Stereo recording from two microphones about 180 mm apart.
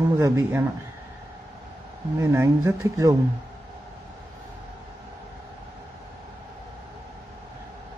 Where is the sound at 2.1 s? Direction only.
15° right (ahead or behind).